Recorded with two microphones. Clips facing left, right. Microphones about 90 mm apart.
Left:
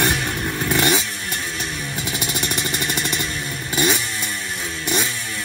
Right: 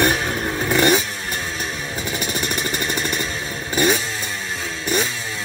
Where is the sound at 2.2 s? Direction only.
50° right (ahead or behind).